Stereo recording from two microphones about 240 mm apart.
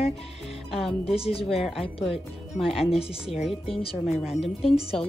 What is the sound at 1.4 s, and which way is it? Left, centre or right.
Speech, centre.